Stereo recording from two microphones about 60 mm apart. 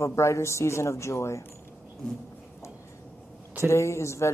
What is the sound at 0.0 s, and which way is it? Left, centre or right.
Speech, left.